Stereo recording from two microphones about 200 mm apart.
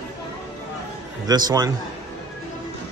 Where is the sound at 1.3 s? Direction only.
20° right (ahead or behind).